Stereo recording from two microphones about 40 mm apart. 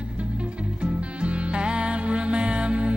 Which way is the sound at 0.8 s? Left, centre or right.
Right.